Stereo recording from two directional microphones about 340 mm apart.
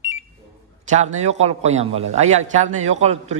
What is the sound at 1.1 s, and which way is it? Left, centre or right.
A man's voice, centre.